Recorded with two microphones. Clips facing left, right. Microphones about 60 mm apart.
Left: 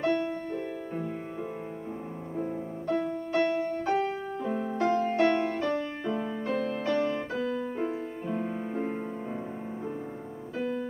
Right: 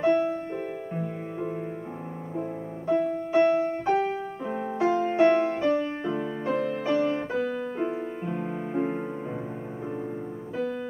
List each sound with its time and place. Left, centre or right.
0.0 s music: centre
2.3 s music: centre
8.3 s music: centre